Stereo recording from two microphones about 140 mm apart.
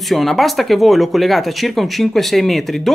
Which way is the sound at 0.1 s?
Centre (ahead or behind).